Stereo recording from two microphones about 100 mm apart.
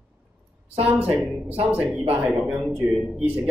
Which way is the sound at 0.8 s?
15° right (ahead or behind).